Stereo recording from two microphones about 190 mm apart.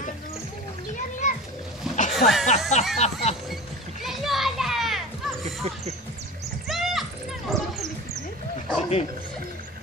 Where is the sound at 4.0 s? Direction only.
Centre (ahead or behind).